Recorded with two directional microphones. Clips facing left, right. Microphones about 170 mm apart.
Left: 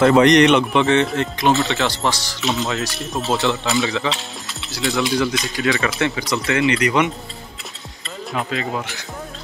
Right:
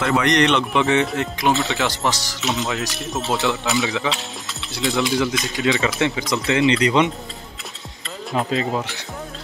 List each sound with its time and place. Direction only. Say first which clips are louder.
0.2 s a man's voice: left 6 dB; 15° left (ahead or behind)
0.7 s speech: left 2 dB; 5° right (ahead or behind)
3.2 s speech: left 2 dB; centre (ahead or behind)
3.6 s speech: left 1 dB; 10° right (ahead or behind)
8.4 s speech: right 3 dB; 30° right (ahead or behind)